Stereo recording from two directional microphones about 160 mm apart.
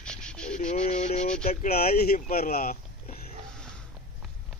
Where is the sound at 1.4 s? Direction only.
50° left (ahead or behind).